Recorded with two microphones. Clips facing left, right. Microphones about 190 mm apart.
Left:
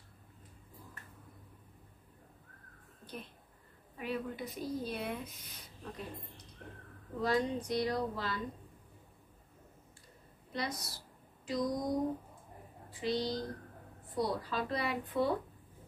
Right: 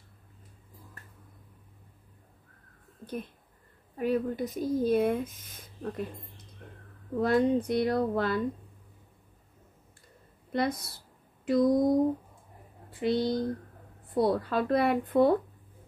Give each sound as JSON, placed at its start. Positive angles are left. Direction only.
{"t": 3.9, "sound": "speech", "side_deg": -45}
{"t": 10.5, "sound": "speech", "side_deg": -55}
{"t": 12.9, "sound": "speech", "side_deg": -55}